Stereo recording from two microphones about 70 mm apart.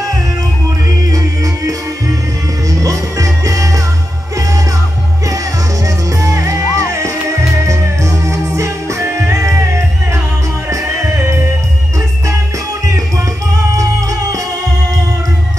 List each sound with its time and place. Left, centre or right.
1.1 s music: right
6.2 s music: right